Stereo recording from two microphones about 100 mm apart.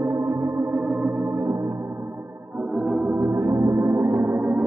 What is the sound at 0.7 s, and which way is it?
Organ, 10° right (ahead or behind).